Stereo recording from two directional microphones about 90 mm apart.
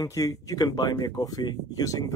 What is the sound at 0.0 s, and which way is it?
A man's voice, 40° left (ahead or behind).